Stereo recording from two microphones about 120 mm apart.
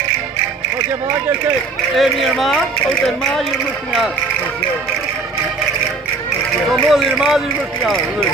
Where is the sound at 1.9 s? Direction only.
Centre (ahead or behind).